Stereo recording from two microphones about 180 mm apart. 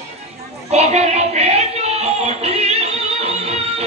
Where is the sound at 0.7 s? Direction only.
35° right (ahead or behind).